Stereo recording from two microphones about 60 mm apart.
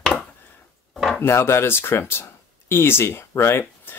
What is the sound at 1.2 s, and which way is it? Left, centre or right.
Speech, left.